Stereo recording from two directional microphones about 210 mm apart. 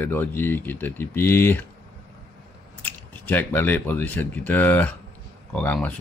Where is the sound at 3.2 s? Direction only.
10° left (ahead or behind).